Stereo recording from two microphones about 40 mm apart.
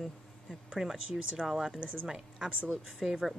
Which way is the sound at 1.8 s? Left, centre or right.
Right.